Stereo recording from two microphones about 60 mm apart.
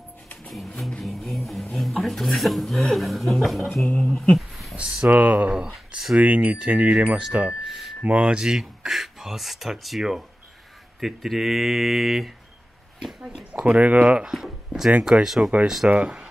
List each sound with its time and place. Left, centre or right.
0.8 s a sound: centre
3.9 s speech: centre
4.3 s a sound: centre
4.7 s speech: centre
6.1 s speech: right
7.7 s a sound: centre
8.0 s speech: centre
13.5 s speech: centre
14.3 s speech: centre